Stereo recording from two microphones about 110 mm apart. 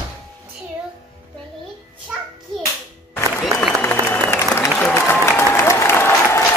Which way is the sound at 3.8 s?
15° left (ahead or behind).